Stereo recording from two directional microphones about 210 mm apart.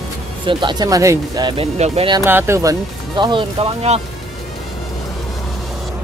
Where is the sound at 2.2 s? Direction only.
10° right (ahead or behind); by 4.0 s 25° right (ahead or behind).